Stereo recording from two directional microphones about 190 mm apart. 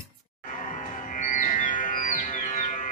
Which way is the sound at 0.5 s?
40° left (ahead or behind).